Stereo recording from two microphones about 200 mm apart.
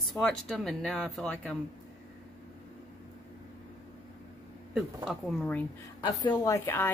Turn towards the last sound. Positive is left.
turn(degrees=10)  # may be behind; listen again after turning